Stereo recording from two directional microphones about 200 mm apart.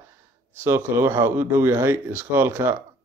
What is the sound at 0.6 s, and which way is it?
Speech, 10° right (ahead or behind).